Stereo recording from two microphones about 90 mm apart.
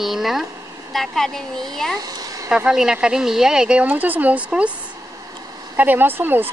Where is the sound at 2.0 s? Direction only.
45° right (ahead or behind).